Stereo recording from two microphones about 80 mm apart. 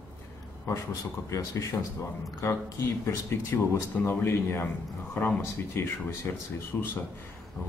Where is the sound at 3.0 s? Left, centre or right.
Left.